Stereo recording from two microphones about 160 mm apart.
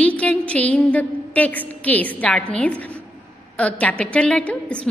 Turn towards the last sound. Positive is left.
turn(degrees=5)  # may be behind; listen again after turning